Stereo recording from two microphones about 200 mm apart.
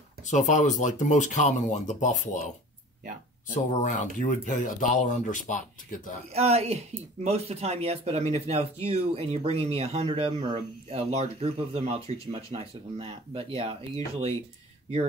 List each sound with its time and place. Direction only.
0.2 s speech: 40° left (ahead or behind)
3.5 s speech: 40° left (ahead or behind)
6.3 s speech: 30° right (ahead or behind)